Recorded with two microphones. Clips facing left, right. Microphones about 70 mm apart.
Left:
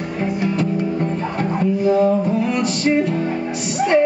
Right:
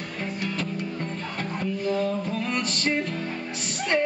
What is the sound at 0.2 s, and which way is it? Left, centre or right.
Music, centre.